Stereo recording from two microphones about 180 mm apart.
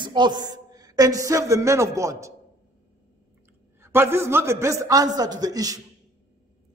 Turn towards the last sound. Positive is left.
turn(degrees=-20)  # may be behind; listen again after turning